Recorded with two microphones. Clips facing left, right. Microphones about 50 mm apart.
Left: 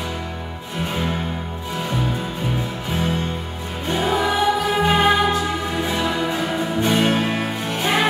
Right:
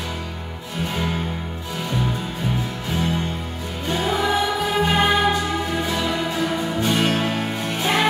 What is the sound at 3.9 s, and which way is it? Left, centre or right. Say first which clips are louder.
Music: left 1 dB; centre.